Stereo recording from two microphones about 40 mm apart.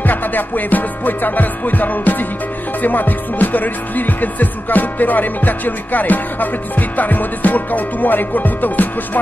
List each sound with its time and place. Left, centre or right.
0.0 s music: left